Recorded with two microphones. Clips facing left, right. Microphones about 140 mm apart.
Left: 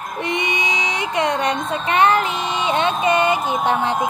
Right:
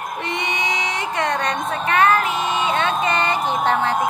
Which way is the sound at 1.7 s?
20° left (ahead or behind).